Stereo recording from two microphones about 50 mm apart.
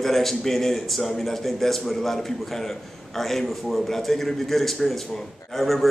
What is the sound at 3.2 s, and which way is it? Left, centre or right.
A man's voice, centre.